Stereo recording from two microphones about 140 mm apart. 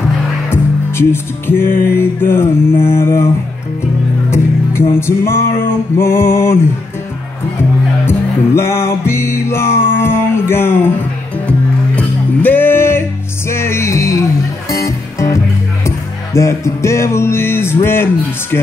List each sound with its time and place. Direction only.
0.5 s music: 15° left (ahead or behind)
4.3 s music: 20° left (ahead or behind)
8.1 s music: 15° left (ahead or behind)